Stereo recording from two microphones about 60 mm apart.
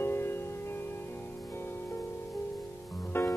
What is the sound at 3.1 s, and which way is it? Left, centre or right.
Music, left.